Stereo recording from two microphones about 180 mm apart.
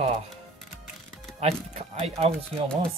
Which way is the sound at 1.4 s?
35° right (ahead or behind).